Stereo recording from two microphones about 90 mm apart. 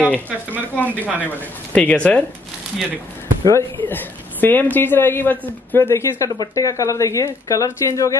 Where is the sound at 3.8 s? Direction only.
20° left (ahead or behind).